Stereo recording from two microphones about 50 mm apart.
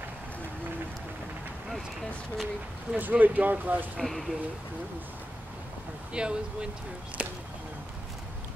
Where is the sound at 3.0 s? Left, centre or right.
Right.